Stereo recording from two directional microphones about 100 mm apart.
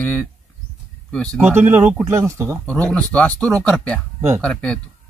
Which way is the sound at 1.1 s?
10° left (ahead or behind).